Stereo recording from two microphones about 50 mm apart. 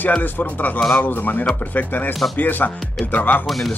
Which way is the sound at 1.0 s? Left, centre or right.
Left.